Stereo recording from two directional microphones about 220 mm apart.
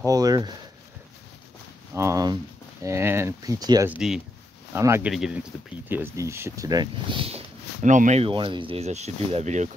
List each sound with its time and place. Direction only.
0.0 s speech: 15° right (ahead or behind)
2.0 s a sound: 15° right (ahead or behind)
3.9 s speech: centre (ahead or behind); by 9.7 s 30° right (ahead or behind)